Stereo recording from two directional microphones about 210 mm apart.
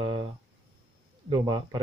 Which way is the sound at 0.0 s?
25° right (ahead or behind).